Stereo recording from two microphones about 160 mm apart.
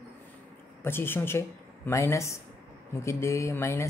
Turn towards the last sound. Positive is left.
turn(degrees=15)  # may be behind; listen again after turning